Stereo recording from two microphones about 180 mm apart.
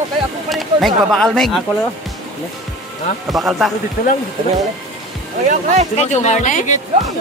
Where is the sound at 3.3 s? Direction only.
Centre (ahead or behind).